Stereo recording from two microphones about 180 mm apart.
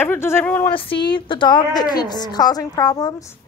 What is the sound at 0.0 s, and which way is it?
Speech, 15° left (ahead or behind).